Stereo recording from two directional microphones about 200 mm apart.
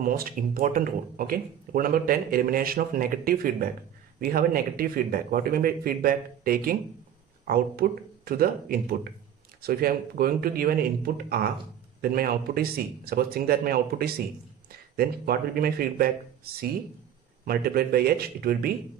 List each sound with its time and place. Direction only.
0.0 s speech: 45° right (ahead or behind)